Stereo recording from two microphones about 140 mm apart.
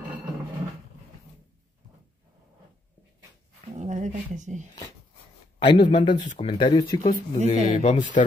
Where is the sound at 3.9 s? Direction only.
60° right (ahead or behind).